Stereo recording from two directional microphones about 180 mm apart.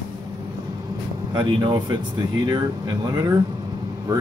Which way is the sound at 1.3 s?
25° right (ahead or behind).